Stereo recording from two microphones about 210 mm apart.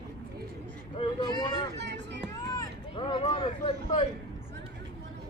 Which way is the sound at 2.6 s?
25° left (ahead or behind).